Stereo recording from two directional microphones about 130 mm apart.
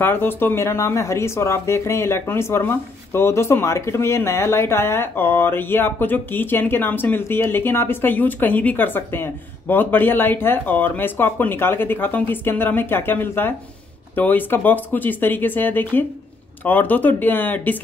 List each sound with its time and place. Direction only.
0.0 s speech: 15° left (ahead or behind)